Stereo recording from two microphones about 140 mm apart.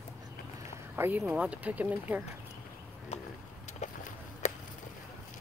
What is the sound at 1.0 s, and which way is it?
Speech, 15° right (ahead or behind).